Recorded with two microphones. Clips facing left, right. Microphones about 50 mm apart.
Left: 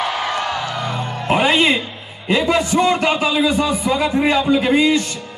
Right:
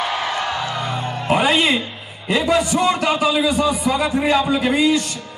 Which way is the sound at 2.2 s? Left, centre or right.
Left.